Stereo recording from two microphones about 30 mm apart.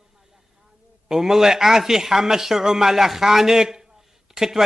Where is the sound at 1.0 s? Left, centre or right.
Centre.